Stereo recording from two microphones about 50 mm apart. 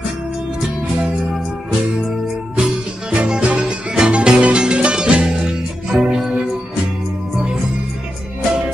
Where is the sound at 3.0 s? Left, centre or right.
Centre.